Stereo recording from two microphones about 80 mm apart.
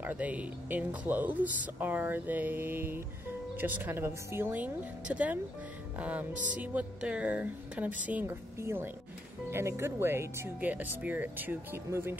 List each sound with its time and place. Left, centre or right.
0.0 s speech: centre
8.3 s speech: right
10.6 s speech: centre